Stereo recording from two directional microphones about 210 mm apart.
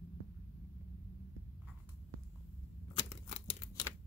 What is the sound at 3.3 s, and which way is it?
Tearing, 30° left (ahead or behind).